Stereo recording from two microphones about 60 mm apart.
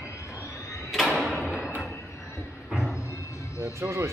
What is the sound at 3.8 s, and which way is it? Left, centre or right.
Speech, right.